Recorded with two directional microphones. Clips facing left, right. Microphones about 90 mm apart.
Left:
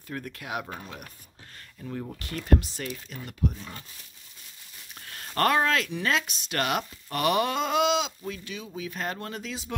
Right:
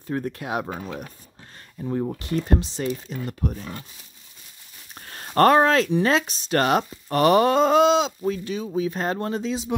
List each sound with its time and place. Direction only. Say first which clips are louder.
0.0 s speech: right 9 dB; 30° right (ahead or behind)
3.4 s speech: even; 50° right (ahead or behind)
4.9 s speech: right 9 dB; 35° right (ahead or behind)